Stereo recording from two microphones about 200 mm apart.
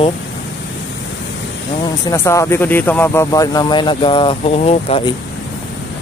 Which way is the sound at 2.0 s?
15° left (ahead or behind).